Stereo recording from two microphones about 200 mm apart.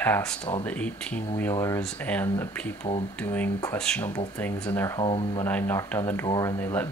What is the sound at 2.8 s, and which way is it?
Speech, 30° left (ahead or behind).